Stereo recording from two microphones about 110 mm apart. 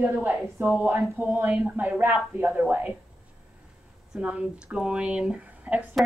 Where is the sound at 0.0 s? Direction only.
15° right (ahead or behind).